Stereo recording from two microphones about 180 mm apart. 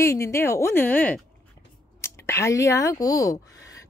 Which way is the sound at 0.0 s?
15° left (ahead or behind).